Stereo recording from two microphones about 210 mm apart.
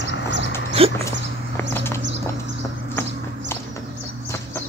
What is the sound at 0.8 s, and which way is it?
Dog, 25° right (ahead or behind).